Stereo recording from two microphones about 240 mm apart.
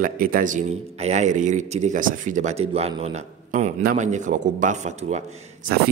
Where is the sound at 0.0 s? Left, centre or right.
Right.